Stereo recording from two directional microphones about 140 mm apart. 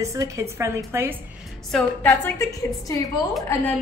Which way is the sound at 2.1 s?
20° left (ahead or behind).